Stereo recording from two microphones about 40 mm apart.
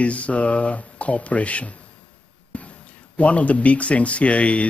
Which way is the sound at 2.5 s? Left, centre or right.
Left.